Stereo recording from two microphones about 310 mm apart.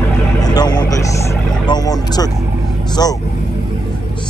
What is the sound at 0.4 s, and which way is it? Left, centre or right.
Vehicle, centre.